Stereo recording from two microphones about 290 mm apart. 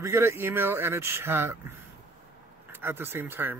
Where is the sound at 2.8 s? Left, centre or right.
Centre.